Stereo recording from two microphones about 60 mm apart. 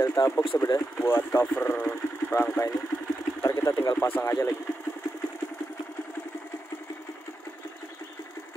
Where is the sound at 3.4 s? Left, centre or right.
Left.